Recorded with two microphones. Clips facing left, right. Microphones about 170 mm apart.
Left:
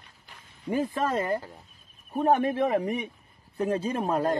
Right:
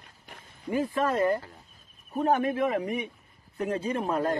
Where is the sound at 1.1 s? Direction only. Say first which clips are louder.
Right 2 dB; 25° left (ahead or behind).